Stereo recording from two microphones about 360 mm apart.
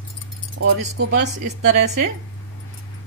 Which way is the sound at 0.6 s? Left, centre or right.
Right.